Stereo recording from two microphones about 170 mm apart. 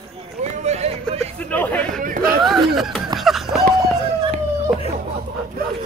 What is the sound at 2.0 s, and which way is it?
Chatter, 55° right (ahead or behind).